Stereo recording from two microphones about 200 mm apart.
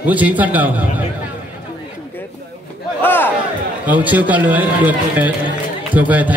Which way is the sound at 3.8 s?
10° right (ahead or behind).